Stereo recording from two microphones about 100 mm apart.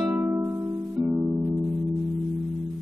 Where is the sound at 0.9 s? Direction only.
15° right (ahead or behind).